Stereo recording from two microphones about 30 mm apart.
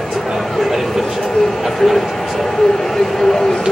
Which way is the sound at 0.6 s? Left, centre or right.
Centre.